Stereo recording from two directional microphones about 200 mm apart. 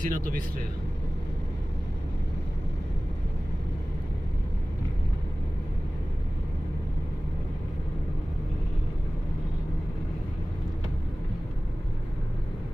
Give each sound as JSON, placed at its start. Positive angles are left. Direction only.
{"t": 0.0, "sound": "speech", "side_deg": -45}